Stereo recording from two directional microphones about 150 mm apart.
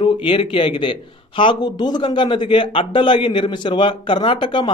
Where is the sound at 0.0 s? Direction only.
35° left (ahead or behind).